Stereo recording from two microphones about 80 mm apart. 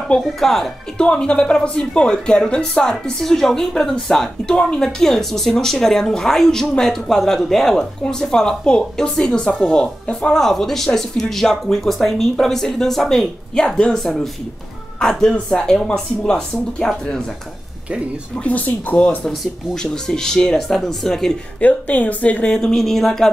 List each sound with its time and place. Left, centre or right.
0.1 s speech: centre
18.4 s speech: centre
19.2 s speech: centre
21.5 s speech: centre